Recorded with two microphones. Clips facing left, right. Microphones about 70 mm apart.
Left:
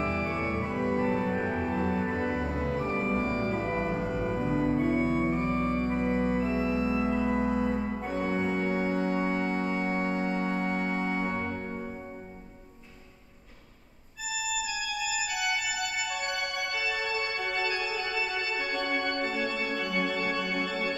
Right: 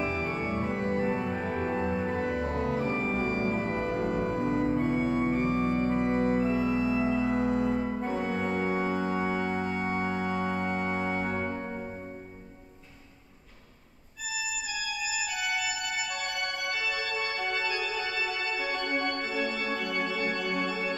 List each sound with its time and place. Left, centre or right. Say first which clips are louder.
0.0 s music: left 1 dB; centre
0.7 s organ: left 1 dB; centre
2.9 s music: left 1 dB; centre
3.3 s music: right 1 dB; right
3.5 s organ: even; centre
6.0 s organ: right 1 dB; centre
6.3 s organ: right 1 dB; centre
14.9 s music: right 1 dB; centre
15.4 s organ: left 1 dB; centre